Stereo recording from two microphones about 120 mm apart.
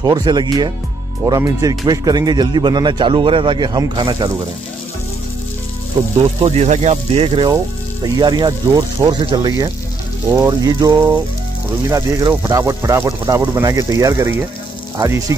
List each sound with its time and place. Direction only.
0.0 s a man's voice: 35° right (ahead or behind)
6.4 s speech: 65° right (ahead or behind)
8.0 s a man's voice: 35° right (ahead or behind)